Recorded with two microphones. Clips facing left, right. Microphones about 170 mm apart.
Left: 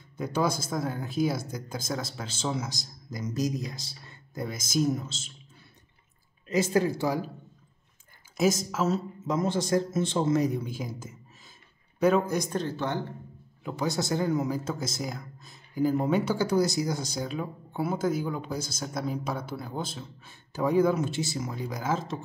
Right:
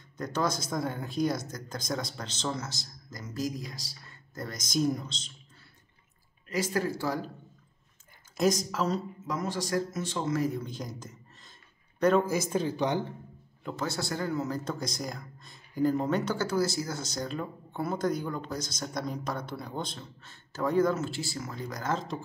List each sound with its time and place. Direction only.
0.2 s speech: 10° left (ahead or behind)
4.4 s speech: 5° left (ahead or behind)
6.5 s speech: 20° left (ahead or behind)
8.4 s speech: 5° left (ahead or behind)
9.3 s a man's voice: 25° left (ahead or behind); by 13.0 s 15° right (ahead or behind)
13.7 s speech: 15° left (ahead or behind)
14.6 s speech: 5° left (ahead or behind)